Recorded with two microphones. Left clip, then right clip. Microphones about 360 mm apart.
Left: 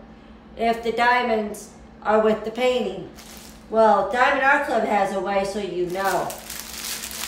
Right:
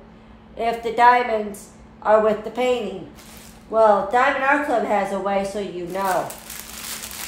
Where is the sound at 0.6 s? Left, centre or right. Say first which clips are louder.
Right 4 dB; centre.